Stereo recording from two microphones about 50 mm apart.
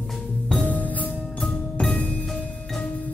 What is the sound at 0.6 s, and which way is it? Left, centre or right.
Music, left.